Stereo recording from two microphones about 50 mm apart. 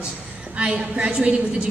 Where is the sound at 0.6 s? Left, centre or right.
Right.